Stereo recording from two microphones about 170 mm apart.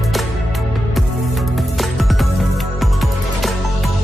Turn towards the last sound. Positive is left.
turn(degrees=0)  # may be behind; listen again after turning